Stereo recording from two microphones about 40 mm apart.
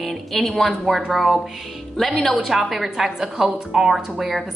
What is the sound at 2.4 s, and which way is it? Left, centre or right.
A woman's voice, centre.